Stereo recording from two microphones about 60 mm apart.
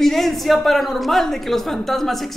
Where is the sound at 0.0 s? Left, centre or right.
Centre.